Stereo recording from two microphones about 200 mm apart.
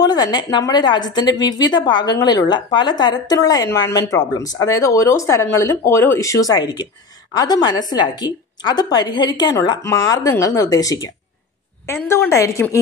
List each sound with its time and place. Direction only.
0.0 s a woman's voice: 20° left (ahead or behind)
12.1 s a woman's voice: 15° left (ahead or behind)